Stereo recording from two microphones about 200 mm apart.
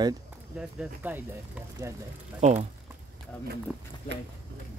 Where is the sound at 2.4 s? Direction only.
35° right (ahead or behind).